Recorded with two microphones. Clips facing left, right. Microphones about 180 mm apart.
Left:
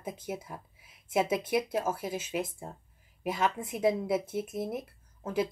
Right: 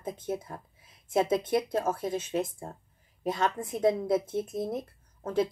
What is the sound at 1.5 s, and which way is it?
Speech, 5° left (ahead or behind).